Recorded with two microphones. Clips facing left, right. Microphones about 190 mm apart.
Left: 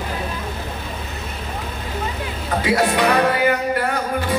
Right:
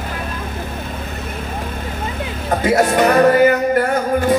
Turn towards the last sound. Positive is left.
turn(degrees=-45)  # may be behind; listen again after turning